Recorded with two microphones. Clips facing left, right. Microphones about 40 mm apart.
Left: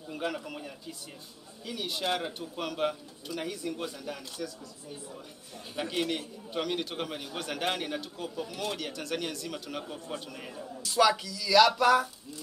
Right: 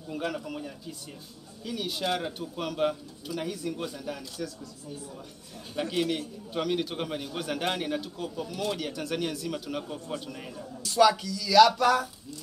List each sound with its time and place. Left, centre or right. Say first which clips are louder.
0.1 s speech: right 2 dB; centre
5.8 s speech: right 3 dB; centre